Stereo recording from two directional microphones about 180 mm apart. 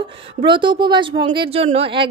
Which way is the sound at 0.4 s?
25° right (ahead or behind).